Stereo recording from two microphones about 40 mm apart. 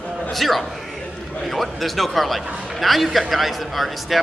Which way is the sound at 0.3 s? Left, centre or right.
Centre.